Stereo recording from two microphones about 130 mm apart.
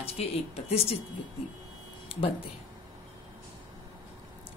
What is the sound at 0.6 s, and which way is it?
Speech, 50° left (ahead or behind).